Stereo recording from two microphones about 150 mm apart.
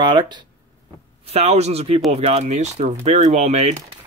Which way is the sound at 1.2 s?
45° right (ahead or behind).